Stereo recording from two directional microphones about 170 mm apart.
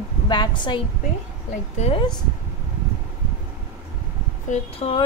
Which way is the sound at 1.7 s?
40° left (ahead or behind).